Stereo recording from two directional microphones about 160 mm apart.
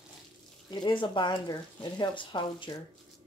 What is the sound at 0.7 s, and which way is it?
Speech, 30° left (ahead or behind).